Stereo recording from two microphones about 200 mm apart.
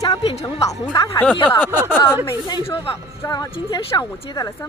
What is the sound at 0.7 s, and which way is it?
Speech, 15° left (ahead or behind).